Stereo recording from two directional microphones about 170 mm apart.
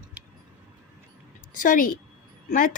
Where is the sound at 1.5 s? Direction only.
50° left (ahead or behind).